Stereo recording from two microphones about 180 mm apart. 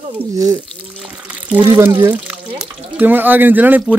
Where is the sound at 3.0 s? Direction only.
10° right (ahead or behind).